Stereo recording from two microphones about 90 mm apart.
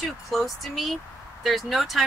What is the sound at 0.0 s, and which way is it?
Speech, centre (ahead or behind).